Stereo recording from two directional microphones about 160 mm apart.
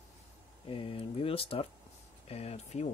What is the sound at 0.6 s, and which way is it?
Speech, 35° left (ahead or behind).